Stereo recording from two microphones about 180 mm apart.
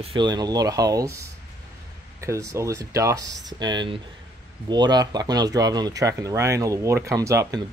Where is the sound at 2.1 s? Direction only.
15° right (ahead or behind).